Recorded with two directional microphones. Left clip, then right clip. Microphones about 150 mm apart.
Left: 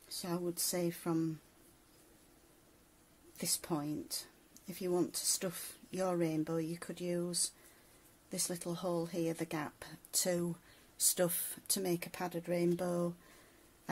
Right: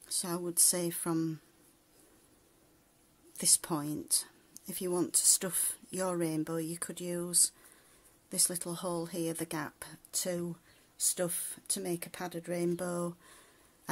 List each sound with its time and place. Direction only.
0.1 s speech: 30° right (ahead or behind)
3.3 s speech: 30° right (ahead or behind); by 10.4 s 10° right (ahead or behind)
10.4 s speech: centre (ahead or behind); by 13.1 s 20° right (ahead or behind)